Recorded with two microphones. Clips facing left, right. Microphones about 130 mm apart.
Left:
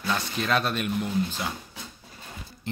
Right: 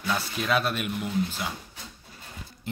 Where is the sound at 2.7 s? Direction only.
5° right (ahead or behind).